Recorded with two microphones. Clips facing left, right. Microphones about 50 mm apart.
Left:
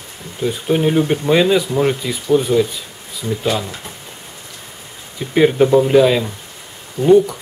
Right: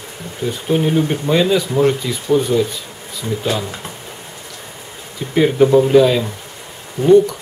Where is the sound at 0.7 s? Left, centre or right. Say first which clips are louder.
Left 1 dB; centre.